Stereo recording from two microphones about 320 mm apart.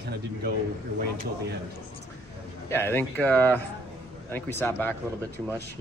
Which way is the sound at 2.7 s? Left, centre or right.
Centre.